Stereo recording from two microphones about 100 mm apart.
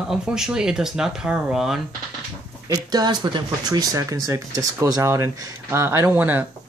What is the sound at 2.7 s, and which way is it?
Speech, 40° right (ahead or behind).